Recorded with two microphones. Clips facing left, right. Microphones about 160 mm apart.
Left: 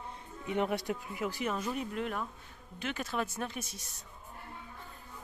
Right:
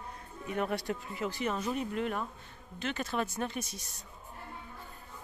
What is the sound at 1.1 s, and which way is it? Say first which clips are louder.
Speech: right 1 dB; 5° left (ahead or behind).